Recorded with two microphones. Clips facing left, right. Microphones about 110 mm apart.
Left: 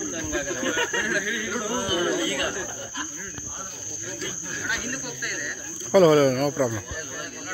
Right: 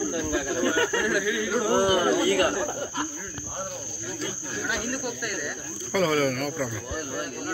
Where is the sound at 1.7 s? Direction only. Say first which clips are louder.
Right 4 dB; 60° right (ahead or behind).